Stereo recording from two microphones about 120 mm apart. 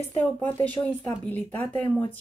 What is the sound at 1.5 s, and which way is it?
Speech, 15° left (ahead or behind).